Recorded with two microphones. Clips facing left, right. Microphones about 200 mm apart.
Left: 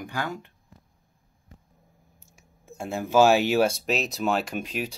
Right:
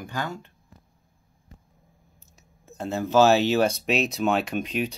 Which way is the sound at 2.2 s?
10° left (ahead or behind).